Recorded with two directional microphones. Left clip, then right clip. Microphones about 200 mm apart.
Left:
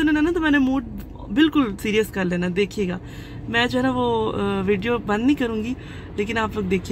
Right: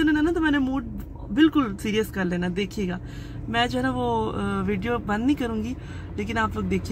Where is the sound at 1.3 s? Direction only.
25° left (ahead or behind).